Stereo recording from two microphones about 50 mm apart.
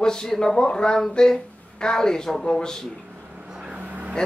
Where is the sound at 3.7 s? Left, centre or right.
Right.